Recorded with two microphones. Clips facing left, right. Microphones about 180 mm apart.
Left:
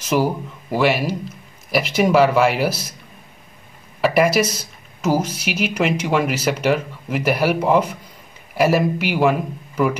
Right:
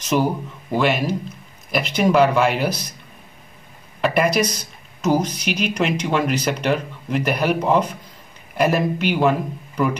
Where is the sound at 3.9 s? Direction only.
5° left (ahead or behind).